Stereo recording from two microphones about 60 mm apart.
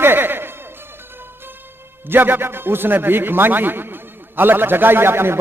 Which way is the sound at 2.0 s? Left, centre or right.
Right.